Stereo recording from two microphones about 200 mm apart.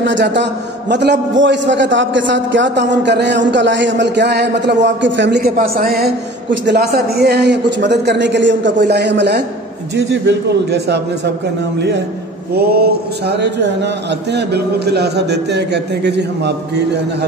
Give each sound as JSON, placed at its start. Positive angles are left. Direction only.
{"t": 0.0, "sound": "a man's voice", "side_deg": -65}
{"t": 5.6, "sound": "a man's voice", "side_deg": -45}
{"t": 6.5, "sound": "a man's voice", "side_deg": -60}
{"t": 12.5, "sound": "a man's voice", "side_deg": -50}